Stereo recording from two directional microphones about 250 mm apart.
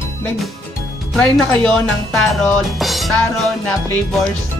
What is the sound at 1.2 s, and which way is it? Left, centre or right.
Speech, centre.